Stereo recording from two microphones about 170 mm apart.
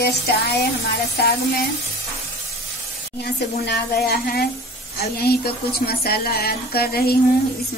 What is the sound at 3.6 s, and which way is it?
A woman's voice, 75° left (ahead or behind).